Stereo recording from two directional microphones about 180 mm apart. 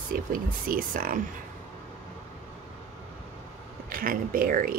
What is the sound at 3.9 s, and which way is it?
Speech, 50° right (ahead or behind).